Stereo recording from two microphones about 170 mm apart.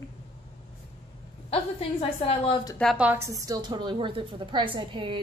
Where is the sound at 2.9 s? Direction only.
10° right (ahead or behind).